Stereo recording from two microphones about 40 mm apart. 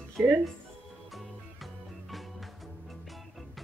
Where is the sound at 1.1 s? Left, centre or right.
Centre.